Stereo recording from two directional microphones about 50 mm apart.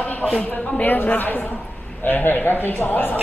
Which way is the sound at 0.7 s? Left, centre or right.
Left.